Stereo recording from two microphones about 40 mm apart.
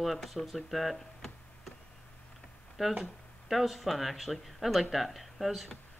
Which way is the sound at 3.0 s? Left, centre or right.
Centre.